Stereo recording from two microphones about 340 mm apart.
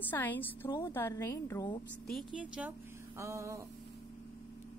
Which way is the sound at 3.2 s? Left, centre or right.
Centre.